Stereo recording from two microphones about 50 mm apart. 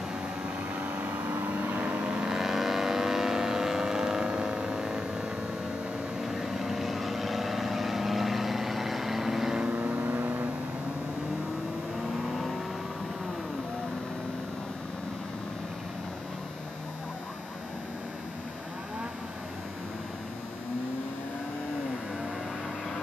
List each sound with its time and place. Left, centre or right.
0.7 s vehicle: right
2.2 s vehicle: centre
6.2 s vehicle: centre; by 10.5 s right